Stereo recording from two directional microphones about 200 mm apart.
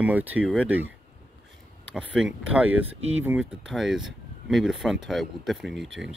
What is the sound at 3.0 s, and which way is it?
Speech, 80° right.